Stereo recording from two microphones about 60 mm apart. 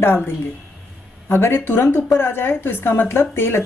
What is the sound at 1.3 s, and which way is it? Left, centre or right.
Speech, left.